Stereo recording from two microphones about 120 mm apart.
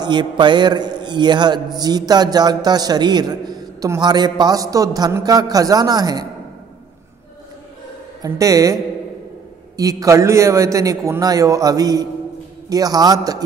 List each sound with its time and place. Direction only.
0.0 s a man's voice: 40° right (ahead or behind)
8.2 s a man's voice: 30° right (ahead or behind)
9.8 s a man's voice: 30° right (ahead or behind)